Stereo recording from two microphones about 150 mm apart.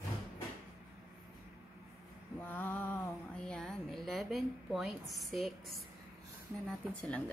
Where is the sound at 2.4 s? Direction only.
10° left (ahead or behind).